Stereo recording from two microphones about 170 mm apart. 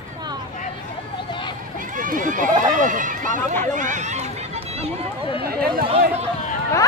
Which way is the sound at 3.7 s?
45° right (ahead or behind).